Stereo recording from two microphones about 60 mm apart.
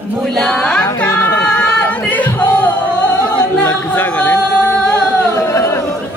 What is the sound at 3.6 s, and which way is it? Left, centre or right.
A capella, left.